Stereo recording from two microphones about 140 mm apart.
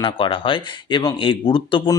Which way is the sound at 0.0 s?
40° left (ahead or behind).